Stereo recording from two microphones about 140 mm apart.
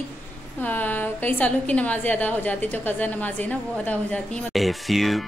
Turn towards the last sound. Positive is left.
turn(degrees=0)  # may be behind; listen again after turning